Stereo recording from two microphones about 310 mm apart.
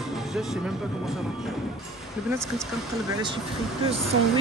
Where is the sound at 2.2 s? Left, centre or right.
Centre.